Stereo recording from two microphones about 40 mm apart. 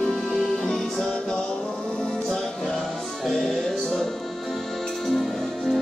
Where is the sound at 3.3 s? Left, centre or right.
Centre.